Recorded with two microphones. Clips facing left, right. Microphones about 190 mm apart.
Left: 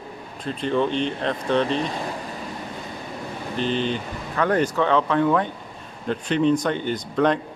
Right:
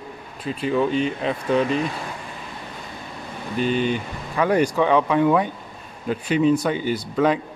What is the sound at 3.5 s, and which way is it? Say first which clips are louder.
Speech: right 3 dB; 10° right (ahead or behind).